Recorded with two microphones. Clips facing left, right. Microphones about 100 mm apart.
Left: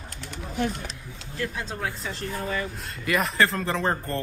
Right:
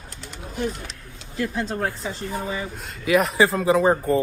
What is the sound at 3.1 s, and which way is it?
Speech, centre (ahead or behind).